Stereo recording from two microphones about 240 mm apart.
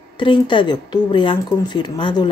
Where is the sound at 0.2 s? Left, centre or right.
Left.